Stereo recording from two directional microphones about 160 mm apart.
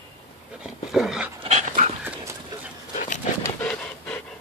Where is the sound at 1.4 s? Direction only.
45° right (ahead or behind).